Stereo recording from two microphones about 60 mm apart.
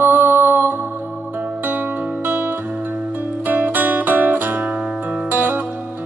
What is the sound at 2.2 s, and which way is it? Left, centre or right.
Music, right.